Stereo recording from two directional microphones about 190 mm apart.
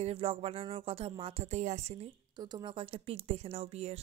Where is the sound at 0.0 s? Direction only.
30° right (ahead or behind).